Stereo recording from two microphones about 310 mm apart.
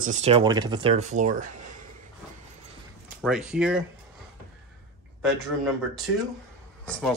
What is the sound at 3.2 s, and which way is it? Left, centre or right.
Speech, centre.